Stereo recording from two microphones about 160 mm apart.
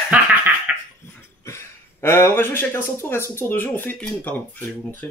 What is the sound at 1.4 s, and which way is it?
Speech, 15° left (ahead or behind).